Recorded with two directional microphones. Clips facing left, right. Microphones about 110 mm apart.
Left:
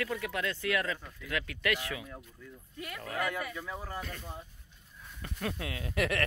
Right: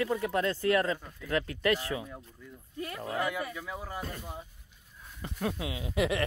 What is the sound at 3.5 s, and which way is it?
Speech, 5° right (ahead or behind).